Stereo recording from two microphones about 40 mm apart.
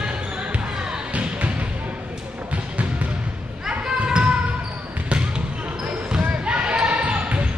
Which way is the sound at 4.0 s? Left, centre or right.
Right.